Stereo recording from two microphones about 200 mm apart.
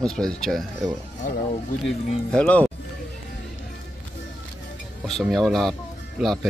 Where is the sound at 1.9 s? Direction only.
5° left (ahead or behind).